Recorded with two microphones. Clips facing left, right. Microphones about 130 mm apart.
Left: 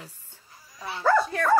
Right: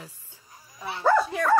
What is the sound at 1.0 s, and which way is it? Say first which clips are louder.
Speech: even; 15° right (ahead or behind).